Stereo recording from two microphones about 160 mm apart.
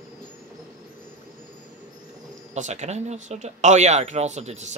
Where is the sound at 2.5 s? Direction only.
45° right (ahead or behind).